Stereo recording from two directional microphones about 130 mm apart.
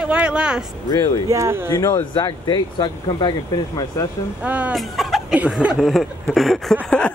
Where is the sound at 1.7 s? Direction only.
30° left (ahead or behind).